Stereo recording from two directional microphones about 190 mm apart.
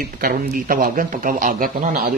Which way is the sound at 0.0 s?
50° right (ahead or behind).